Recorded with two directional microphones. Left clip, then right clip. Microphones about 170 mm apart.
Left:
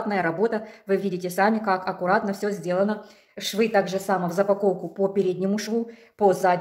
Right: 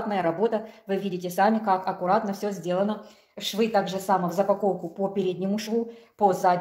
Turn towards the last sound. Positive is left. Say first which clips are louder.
# left 1 dB
turn(degrees=25)  # may be behind; listen again after turning